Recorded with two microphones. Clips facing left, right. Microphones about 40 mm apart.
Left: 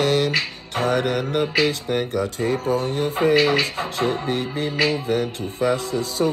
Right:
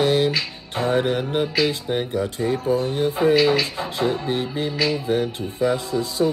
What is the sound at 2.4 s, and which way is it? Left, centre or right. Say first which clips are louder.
Music: right 1 dB; left.